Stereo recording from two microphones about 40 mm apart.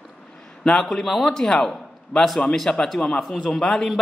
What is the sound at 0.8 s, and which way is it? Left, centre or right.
Speech, centre.